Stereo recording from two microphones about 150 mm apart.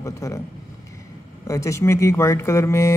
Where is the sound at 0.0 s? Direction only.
20° left (ahead or behind).